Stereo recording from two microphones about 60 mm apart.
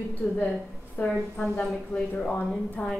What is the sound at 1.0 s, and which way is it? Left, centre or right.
Speech, left.